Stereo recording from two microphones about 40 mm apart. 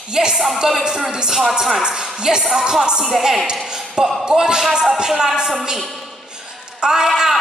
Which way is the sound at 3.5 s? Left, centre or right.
Centre.